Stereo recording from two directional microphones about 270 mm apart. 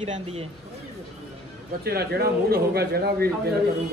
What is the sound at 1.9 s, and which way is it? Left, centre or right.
Speech, right.